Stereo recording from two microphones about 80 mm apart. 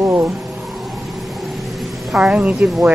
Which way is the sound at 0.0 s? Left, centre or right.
Right.